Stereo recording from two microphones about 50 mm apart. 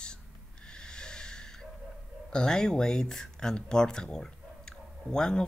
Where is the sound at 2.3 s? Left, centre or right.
Centre.